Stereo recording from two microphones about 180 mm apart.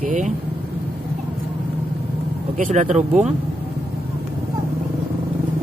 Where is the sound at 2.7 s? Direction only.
45° right (ahead or behind).